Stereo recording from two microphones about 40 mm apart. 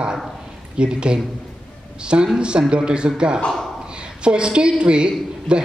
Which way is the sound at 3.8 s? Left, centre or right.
Right.